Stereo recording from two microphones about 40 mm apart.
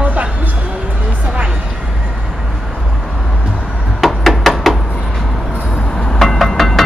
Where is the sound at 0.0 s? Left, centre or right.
Right.